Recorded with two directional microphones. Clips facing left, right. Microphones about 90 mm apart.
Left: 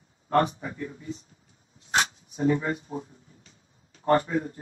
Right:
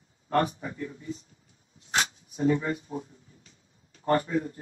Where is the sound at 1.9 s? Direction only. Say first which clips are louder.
Left 3 dB; 35° left (ahead or behind).